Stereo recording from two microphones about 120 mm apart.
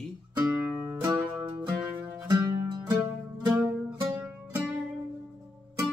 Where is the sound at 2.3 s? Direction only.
35° right (ahead or behind).